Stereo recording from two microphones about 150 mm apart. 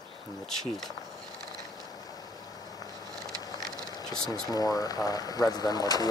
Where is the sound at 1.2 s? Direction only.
5° left (ahead or behind).